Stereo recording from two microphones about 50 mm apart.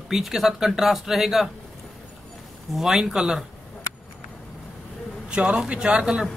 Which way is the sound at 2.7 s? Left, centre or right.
Centre.